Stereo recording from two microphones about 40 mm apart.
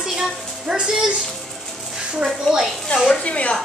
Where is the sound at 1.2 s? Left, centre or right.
Centre.